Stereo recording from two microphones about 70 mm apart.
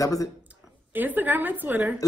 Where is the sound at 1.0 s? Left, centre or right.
Right.